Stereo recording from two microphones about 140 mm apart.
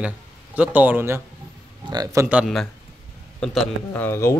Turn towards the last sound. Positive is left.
turn(degrees=15)  # may be behind; listen again after turning